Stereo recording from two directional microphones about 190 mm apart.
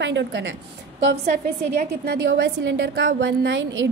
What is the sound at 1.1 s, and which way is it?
A woman's voice, 45° right (ahead or behind).